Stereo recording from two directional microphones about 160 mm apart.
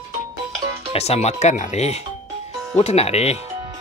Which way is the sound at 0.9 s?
40° left (ahead or behind).